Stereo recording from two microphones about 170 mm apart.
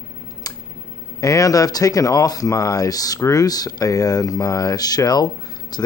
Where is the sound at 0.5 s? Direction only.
20° left (ahead or behind).